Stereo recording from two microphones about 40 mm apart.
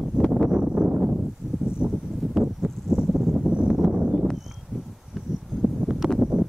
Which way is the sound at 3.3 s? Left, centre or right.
Right.